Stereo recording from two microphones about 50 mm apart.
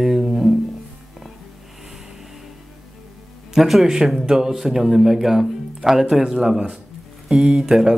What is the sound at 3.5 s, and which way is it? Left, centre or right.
Speech, centre.